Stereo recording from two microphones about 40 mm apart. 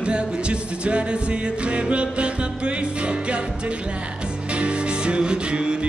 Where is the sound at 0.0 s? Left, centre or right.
Right.